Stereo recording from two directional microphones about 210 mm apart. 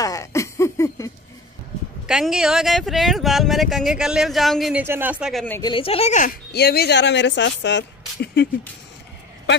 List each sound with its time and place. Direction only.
0.0 s a sound: 15° left (ahead or behind)
2.0 s speech: 5° right (ahead or behind)
5.6 s a woman's voice: 25° left (ahead or behind)
6.5 s speech: 50° left (ahead or behind)